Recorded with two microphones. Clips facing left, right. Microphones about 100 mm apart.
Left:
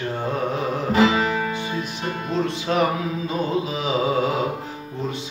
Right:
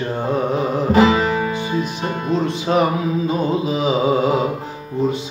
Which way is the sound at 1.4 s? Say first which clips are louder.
Right 5 dB; 20° right (ahead or behind).